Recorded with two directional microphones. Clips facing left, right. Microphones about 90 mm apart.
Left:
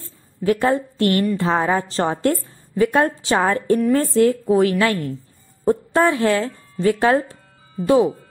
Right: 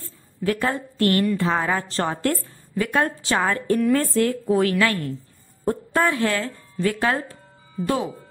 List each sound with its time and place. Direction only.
0.5 s a woman's voice: 25° left (ahead or behind)